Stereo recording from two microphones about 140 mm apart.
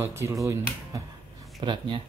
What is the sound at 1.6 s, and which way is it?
Speech, 35° right (ahead or behind).